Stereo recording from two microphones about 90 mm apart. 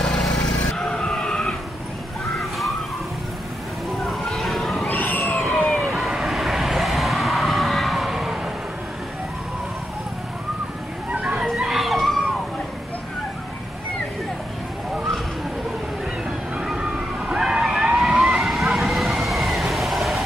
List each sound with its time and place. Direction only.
0.0 s vehicle: 5° left (ahead or behind)
4.0 s a sound: centre (ahead or behind)
4.8 s a sound: 20° left (ahead or behind)
5.5 s vehicle: 5° left (ahead or behind)
11.1 s children playing: 10° right (ahead or behind)
16.5 s vehicle: 10° right (ahead or behind)